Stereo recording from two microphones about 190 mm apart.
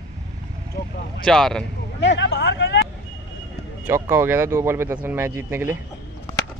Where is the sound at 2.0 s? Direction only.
70° left (ahead or behind).